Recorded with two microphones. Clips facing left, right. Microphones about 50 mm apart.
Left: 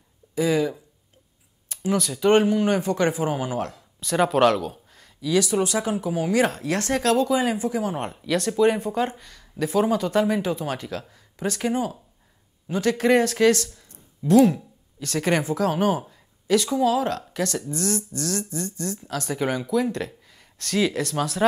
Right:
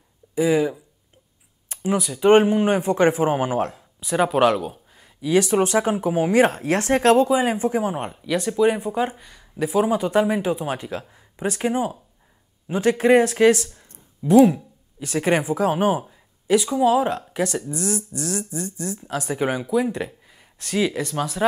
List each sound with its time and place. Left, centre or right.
0.3 s speech: centre
2.2 s speech: right
4.0 s speech: centre
5.2 s speech: right
7.9 s speech: centre
16.0 s a sound: centre
16.8 s speech: centre